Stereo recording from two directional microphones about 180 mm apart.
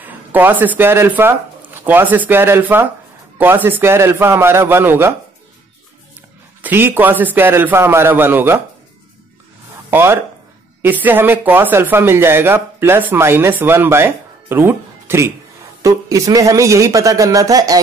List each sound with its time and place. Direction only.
0.0 s speech: 10° right (ahead or behind)
6.6 s speech: 10° right (ahead or behind)
9.8 s speech: 10° right (ahead or behind)